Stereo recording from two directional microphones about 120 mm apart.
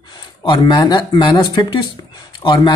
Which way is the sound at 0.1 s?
40° left (ahead or behind).